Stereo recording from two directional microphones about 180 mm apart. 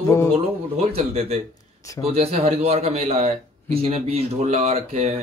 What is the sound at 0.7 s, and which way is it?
Speech, 35° right (ahead or behind).